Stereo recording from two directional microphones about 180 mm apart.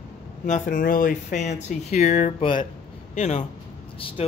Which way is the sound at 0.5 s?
50° left (ahead or behind).